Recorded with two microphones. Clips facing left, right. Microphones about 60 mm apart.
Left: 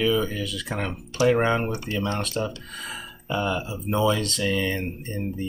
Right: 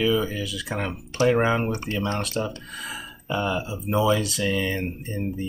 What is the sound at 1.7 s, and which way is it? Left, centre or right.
Speech, right.